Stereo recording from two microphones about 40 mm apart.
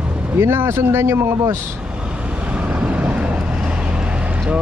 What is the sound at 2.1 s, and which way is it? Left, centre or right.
Vehicle, right.